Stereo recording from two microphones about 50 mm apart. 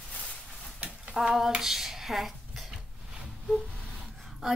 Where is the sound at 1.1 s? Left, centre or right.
Centre.